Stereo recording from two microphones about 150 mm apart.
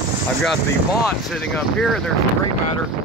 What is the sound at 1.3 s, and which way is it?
Speech, centre (ahead or behind).